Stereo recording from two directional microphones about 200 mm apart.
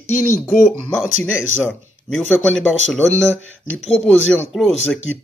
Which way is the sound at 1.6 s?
Centre (ahead or behind).